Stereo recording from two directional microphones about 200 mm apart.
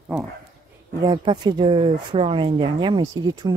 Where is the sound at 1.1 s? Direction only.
20° right (ahead or behind).